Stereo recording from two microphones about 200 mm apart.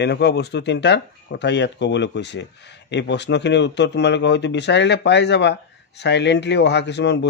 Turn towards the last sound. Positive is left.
turn(degrees=60)  # may be behind; listen again after turning